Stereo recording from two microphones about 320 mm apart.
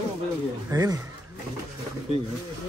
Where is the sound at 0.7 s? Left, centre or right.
Centre.